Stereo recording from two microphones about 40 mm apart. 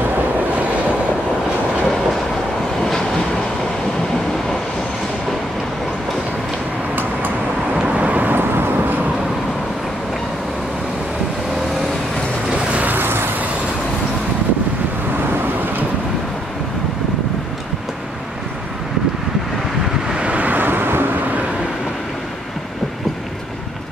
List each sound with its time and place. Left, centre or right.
2.8 s vehicle: centre
7.7 s vehicle: right
8.3 s vehicle: right
12.8 s vehicle: right
20.2 s vehicle: right